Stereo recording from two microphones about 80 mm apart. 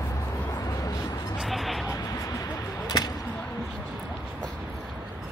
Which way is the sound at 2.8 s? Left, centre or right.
Left.